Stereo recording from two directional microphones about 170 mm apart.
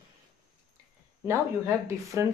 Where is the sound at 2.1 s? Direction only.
20° right (ahead or behind).